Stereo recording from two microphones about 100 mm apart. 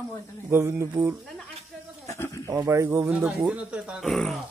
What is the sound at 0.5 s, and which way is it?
Speech, 25° right (ahead or behind).